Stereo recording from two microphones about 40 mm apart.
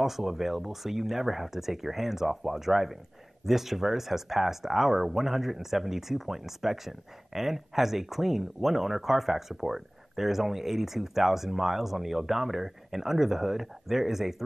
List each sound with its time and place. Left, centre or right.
0.0 s speech: centre